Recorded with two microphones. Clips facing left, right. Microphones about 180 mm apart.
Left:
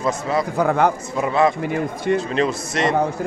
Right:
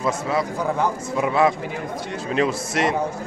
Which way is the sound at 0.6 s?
65° left (ahead or behind).